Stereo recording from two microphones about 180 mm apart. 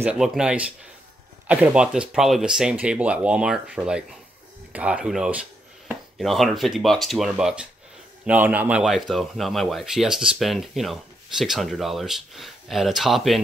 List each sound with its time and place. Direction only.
0.0 s speech: 5° right (ahead or behind)